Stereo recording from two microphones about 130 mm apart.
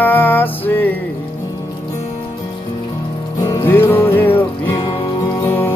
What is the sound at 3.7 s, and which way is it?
Music, 15° left (ahead or behind).